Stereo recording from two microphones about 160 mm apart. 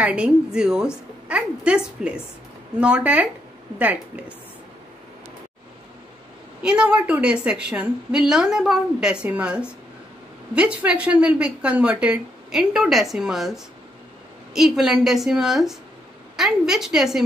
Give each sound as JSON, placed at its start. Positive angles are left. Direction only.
{"t": 0.0, "sound": "a woman's voice", "side_deg": -5}
{"t": 6.6, "sound": "a woman's voice", "side_deg": -5}
{"t": 14.5, "sound": "a woman's voice", "side_deg": -5}